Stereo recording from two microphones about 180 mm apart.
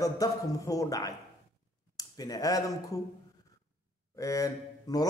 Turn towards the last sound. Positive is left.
turn(degrees=20)  # may be behind; listen again after turning